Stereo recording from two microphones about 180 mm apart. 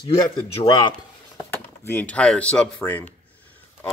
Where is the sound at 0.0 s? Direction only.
25° left (ahead or behind).